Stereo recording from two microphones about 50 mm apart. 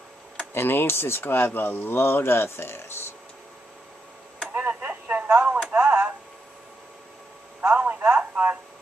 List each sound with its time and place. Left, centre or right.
0.6 s speech: left
4.6 s a sound: right
5.7 s tick: right
7.6 s telephone: right